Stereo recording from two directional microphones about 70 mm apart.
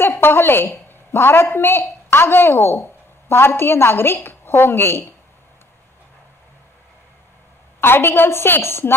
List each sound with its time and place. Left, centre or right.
0.2 s a woman's voice: left
7.8 s a woman's voice: left